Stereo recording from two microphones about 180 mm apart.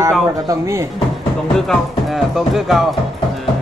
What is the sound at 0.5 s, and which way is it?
Speech, 15° right (ahead or behind).